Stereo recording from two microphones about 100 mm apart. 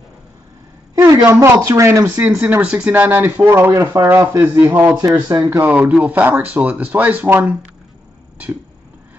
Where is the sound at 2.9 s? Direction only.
20° right (ahead or behind).